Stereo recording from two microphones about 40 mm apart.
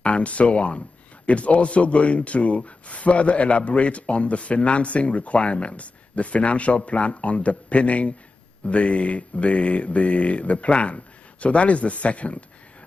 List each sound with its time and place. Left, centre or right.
0.0 s speech: left